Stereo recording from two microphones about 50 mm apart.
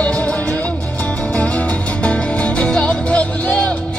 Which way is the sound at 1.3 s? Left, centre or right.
Left.